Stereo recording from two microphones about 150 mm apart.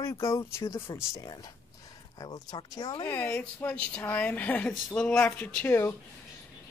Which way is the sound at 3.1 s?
15° left (ahead or behind).